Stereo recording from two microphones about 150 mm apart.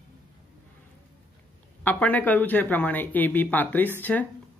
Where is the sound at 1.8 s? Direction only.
10° left (ahead or behind).